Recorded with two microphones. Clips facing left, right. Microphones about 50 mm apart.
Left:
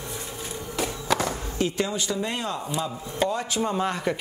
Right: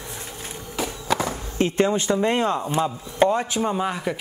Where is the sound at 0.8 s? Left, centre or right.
Centre.